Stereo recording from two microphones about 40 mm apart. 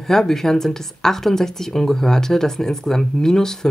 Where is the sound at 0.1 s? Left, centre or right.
Centre.